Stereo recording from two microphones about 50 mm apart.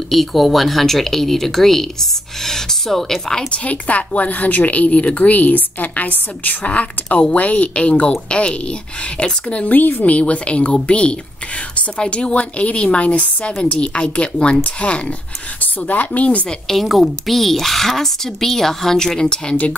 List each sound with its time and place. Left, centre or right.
0.1 s speech: centre
3.5 s a woman's voice: left
9.8 s a woman's voice: left
16.7 s speech: centre